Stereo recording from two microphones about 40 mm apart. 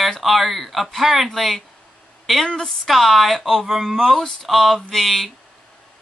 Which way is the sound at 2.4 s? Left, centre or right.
Centre.